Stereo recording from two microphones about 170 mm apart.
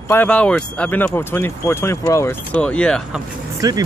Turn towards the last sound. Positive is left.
turn(degrees=-20)  # may be behind; listen again after turning